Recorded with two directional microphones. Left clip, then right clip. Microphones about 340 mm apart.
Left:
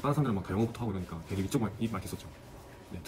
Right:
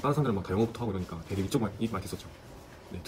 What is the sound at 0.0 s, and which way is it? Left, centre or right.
Speech, centre.